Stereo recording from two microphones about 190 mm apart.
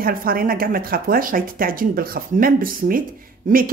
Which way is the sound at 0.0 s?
50° right (ahead or behind).